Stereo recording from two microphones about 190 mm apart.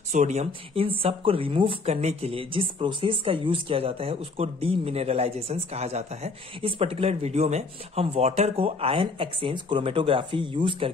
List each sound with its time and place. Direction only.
0.1 s speech: 40° right (ahead or behind)